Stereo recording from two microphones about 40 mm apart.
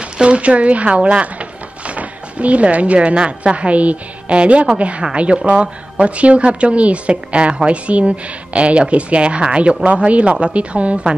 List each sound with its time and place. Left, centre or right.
0.2 s speech: right